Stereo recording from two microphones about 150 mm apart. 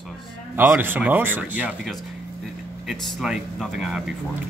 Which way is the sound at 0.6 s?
15° right (ahead or behind).